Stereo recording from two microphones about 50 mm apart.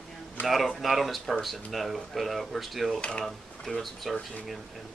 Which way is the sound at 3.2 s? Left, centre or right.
Centre.